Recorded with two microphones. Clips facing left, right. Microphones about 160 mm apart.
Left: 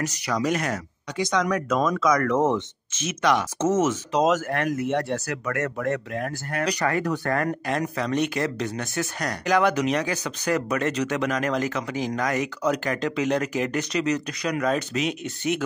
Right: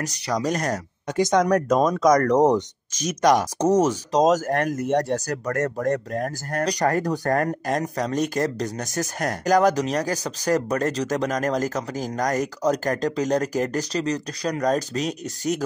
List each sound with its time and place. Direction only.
0.0 s speech: 35° right (ahead or behind)